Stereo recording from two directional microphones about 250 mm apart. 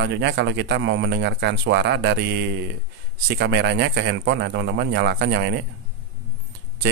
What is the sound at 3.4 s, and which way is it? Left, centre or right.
Speech, right.